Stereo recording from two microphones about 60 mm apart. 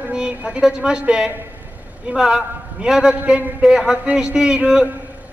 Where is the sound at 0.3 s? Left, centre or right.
Right.